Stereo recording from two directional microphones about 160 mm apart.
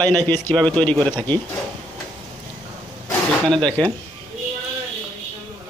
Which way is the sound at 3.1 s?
5° left (ahead or behind).